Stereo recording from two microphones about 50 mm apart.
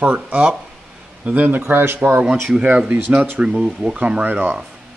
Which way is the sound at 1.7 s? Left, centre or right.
Right.